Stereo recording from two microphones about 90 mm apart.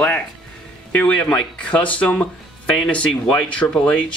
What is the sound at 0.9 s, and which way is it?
Speech, 20° left (ahead or behind).